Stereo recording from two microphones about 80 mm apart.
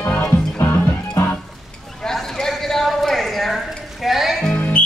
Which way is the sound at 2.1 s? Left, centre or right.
Centre.